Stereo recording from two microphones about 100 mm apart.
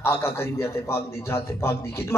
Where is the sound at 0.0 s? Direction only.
25° left (ahead or behind).